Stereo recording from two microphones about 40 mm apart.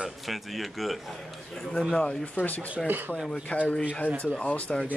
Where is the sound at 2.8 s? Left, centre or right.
Right.